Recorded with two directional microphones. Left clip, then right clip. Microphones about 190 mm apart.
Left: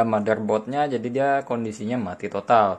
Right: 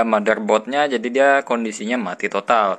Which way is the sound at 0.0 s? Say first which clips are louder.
Right 4 dB; 5° right (ahead or behind).